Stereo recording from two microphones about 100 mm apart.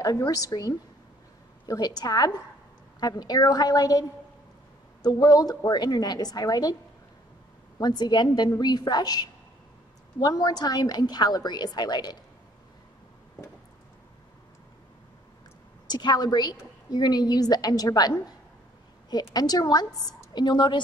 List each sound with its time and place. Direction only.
0.0 s a woman's voice: 35° left (ahead or behind)
5.0 s a woman's voice: 40° left (ahead or behind)
7.8 s a woman's voice: 45° left (ahead or behind)
15.9 s a woman's voice: 45° left (ahead or behind)